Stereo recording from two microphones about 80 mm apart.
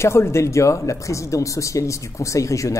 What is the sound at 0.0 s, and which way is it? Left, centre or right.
Speech, left.